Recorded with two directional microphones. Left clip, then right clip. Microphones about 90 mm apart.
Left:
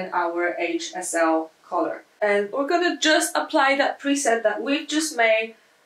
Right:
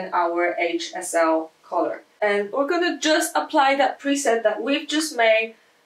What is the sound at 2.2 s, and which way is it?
Speech, centre (ahead or behind).